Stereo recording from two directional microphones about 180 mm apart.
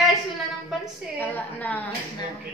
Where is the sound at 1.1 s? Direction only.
10° left (ahead or behind).